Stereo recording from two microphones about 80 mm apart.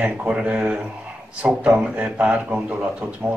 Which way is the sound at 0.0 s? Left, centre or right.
Centre.